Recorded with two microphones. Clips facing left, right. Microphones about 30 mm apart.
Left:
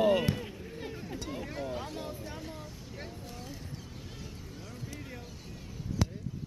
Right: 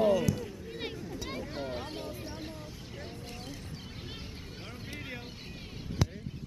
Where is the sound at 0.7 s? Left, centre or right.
Right.